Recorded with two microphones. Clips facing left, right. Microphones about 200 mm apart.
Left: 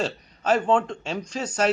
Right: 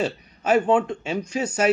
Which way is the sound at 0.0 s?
10° right (ahead or behind).